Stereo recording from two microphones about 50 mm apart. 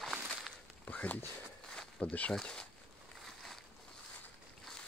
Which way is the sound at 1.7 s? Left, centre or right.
Centre.